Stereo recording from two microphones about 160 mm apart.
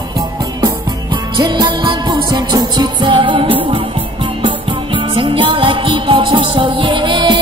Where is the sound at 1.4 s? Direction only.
30° right (ahead or behind).